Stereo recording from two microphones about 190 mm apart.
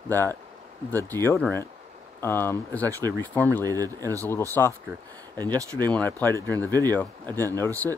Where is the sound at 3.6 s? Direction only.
20° right (ahead or behind).